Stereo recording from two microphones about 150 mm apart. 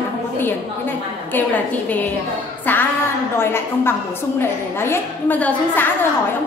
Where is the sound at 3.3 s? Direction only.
15° left (ahead or behind).